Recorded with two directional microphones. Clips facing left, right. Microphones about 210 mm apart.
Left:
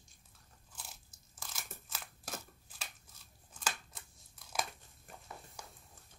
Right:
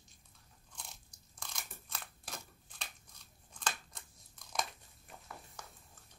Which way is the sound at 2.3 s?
5° left (ahead or behind).